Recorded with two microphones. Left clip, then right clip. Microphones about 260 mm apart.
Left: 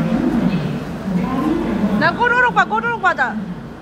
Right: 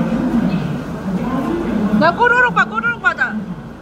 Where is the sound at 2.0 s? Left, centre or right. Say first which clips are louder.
Right 3 dB; centre.